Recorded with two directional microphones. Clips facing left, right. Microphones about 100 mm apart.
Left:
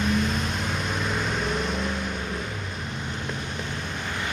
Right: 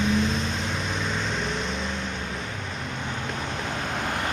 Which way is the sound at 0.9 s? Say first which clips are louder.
Left 1 dB; 5° left (ahead or behind).